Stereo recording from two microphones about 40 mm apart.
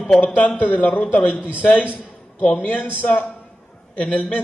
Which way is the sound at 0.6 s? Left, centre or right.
Left.